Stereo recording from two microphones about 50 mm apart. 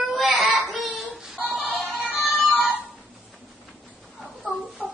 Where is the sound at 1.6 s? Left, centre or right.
Left.